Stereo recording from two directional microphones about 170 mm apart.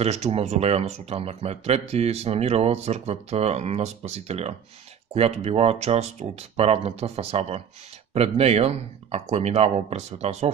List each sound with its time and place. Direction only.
0.0 s speech: 40° right (ahead or behind)